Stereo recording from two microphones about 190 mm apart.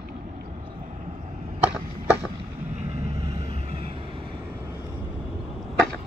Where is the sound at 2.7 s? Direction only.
35° right (ahead or behind).